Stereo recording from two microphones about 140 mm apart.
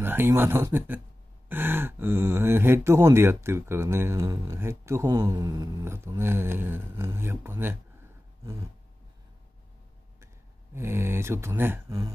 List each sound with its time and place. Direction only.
0.0 s speech: 15° right (ahead or behind)
10.2 s speech: 20° right (ahead or behind)